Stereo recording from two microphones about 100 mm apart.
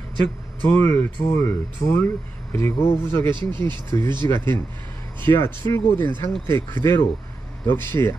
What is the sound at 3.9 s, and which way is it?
Speech, 40° left (ahead or behind).